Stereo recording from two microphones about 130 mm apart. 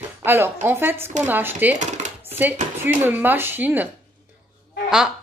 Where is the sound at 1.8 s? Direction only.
65° right (ahead or behind).